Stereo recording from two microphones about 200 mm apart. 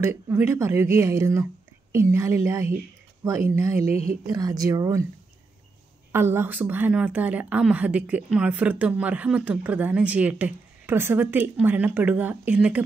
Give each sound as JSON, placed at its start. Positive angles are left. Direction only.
{"t": 0.0, "sound": "a woman's voice", "side_deg": -10}
{"t": 6.1, "sound": "a woman's voice", "side_deg": -10}